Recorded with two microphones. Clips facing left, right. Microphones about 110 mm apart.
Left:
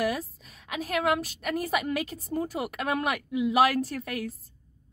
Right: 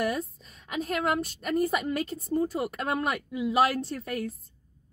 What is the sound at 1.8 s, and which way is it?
A woman's voice, 10° left (ahead or behind).